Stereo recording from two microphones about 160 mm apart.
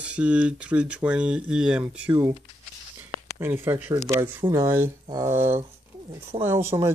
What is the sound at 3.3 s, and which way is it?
Speech, 15° right (ahead or behind).